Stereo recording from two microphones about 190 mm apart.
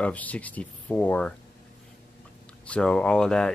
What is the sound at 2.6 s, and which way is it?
Speech, 5° left (ahead or behind).